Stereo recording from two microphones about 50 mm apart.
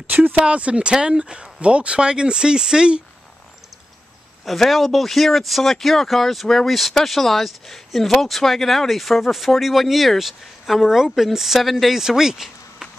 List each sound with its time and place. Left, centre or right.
0.1 s speech: right; by 3.0 s centre
4.5 s speech: centre